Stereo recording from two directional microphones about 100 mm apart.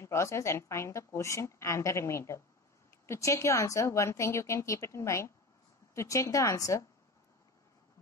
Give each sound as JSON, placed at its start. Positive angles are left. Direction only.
{"t": 0.0, "sound": "a woman's voice", "side_deg": 30}